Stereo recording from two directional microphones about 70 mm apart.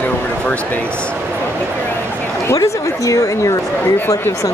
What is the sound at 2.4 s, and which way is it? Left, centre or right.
A woman's voice, left.